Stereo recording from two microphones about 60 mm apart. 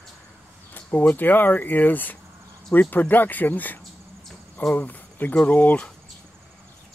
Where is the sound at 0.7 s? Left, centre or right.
Left.